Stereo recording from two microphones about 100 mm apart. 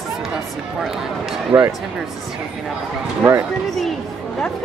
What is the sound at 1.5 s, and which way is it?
Speech, 35° right (ahead or behind).